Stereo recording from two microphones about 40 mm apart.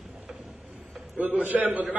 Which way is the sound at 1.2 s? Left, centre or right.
Right.